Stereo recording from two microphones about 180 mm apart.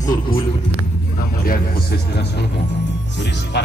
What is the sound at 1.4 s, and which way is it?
A man's voice, 55° left (ahead or behind).